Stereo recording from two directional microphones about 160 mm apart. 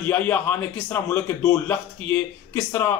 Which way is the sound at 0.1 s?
10° left (ahead or behind).